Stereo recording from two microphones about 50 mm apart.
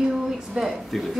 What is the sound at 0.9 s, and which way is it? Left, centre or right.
Speech, centre.